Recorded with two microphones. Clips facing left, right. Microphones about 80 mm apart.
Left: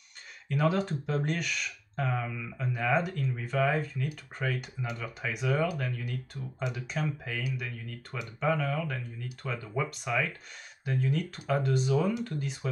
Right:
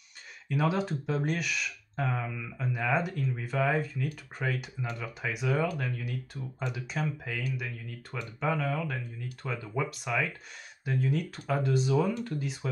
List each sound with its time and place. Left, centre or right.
0.5 s speech: centre